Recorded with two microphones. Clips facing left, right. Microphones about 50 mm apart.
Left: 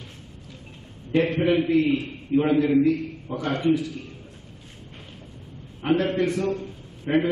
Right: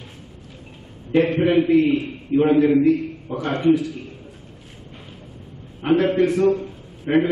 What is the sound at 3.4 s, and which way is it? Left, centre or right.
Speech, right.